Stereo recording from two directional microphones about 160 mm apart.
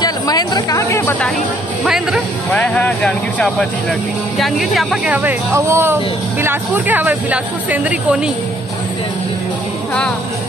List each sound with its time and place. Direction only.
0.0 s speech: 25° left (ahead or behind)
2.5 s speech: 10° left (ahead or behind); by 8.2 s 10° right (ahead or behind)